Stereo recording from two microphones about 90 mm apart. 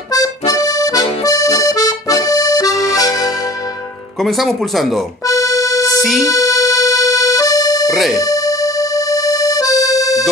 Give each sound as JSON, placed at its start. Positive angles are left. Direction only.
{"t": 0.1, "sound": "accordion", "side_deg": 45}
{"t": 4.2, "sound": "speech", "side_deg": 0}
{"t": 5.2, "sound": "music", "side_deg": 40}
{"t": 5.9, "sound": "music", "side_deg": 0}
{"t": 6.2, "sound": "music", "side_deg": 40}
{"t": 7.8, "sound": "music", "side_deg": 0}
{"t": 8.2, "sound": "music", "side_deg": 40}